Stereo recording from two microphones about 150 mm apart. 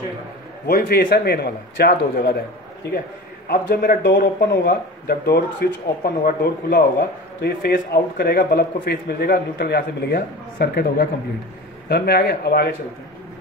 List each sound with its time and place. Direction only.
0.7 s a man's voice: 90° left
3.4 s a man's voice: 80° left